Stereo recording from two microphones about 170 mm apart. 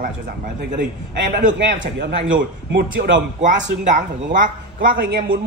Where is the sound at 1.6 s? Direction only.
90° right.